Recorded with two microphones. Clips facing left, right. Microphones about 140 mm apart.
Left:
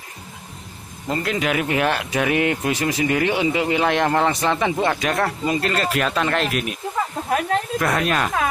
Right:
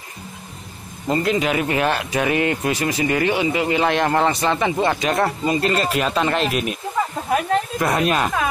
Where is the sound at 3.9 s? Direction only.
10° right (ahead or behind).